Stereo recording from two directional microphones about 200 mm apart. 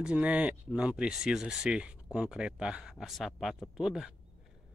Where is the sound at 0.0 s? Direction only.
5° right (ahead or behind).